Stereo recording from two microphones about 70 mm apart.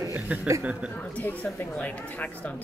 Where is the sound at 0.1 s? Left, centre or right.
Right.